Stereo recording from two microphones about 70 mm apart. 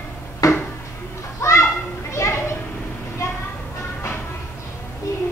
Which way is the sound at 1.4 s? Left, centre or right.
Left.